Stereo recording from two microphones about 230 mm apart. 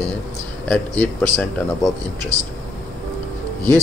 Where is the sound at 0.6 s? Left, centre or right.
Centre.